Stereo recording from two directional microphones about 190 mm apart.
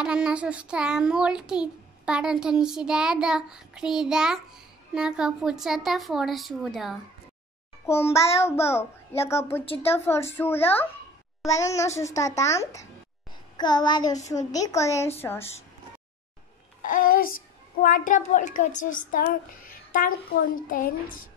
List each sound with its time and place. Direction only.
0.0 s a child's voice: 5° right (ahead or behind)
7.8 s a child's voice: 15° left (ahead or behind)
16.8 s a child's voice: 45° left (ahead or behind)